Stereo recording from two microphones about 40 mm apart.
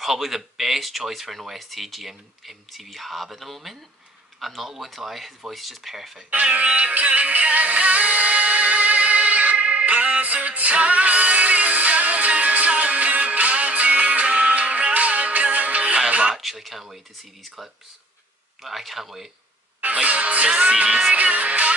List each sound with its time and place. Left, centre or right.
0.0 s speech: centre
6.3 s music: right
16.1 s a sound: right
16.3 s speech: centre
18.6 s speech: centre
19.8 s music: right